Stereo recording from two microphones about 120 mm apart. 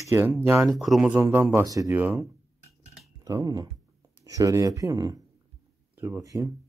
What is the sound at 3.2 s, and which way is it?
Speech, 30° right (ahead or behind).